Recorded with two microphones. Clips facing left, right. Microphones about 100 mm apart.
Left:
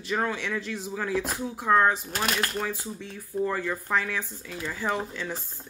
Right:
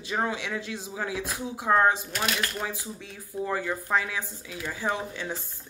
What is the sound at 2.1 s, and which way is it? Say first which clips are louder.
Speech: left 1 dB; 45° left (ahead or behind).